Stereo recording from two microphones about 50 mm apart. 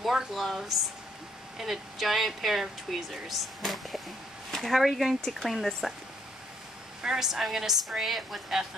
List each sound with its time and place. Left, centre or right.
0.0 s speech: centre
7.0 s a woman's voice: centre